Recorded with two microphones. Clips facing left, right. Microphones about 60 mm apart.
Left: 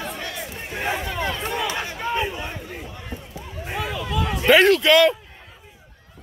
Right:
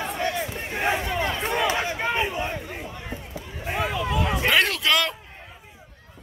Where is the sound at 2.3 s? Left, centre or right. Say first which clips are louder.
Right 3 dB; right.